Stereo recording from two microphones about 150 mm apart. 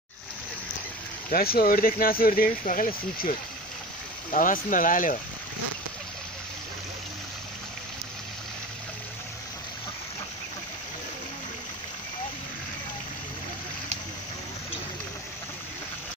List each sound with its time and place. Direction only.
1.3 s speech: 85° left
4.3 s speech: 60° left (ahead or behind)